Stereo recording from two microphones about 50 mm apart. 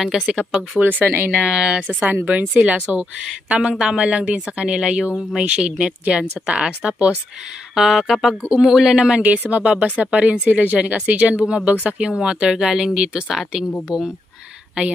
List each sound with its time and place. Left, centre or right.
0.0 s speech: centre
0.8 s speech: right
1.4 s speech: centre
1.9 s speech: right; by 8.9 s centre
8.9 s speech: right